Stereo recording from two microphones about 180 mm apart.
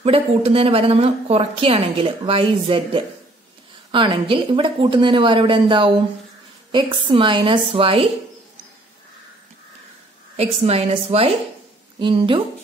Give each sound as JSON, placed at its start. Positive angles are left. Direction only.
{"t": 0.0, "sound": "a woman's voice", "side_deg": -35}
{"t": 10.3, "sound": "speech", "side_deg": -35}